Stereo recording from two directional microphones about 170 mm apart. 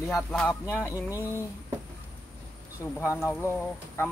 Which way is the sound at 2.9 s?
10° left (ahead or behind).